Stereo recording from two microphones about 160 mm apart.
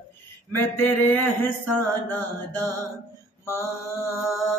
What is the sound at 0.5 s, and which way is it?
Mantra, 15° left (ahead or behind).